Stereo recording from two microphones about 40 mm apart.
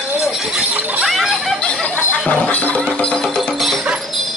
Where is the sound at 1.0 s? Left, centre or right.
Centre.